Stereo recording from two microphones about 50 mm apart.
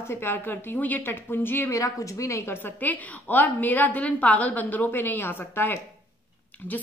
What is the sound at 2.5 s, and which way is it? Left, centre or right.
A woman's voice, left.